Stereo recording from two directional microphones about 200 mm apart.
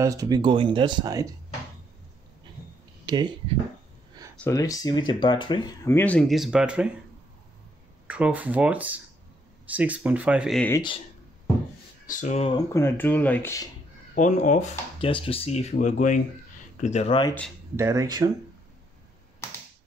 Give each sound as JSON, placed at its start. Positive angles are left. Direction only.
{"t": 0.0, "sound": "speech", "side_deg": -15}
{"t": 3.1, "sound": "speech", "side_deg": -20}
{"t": 4.4, "sound": "speech", "side_deg": 15}
{"t": 5.9, "sound": "speech", "side_deg": 10}
{"t": 8.1, "sound": "speech", "side_deg": -5}
{"t": 12.1, "sound": "speech", "side_deg": 35}
{"t": 12.5, "sound": "speech", "side_deg": 15}
{"t": 14.1, "sound": "speech", "side_deg": 40}
{"t": 17.7, "sound": "speech", "side_deg": -15}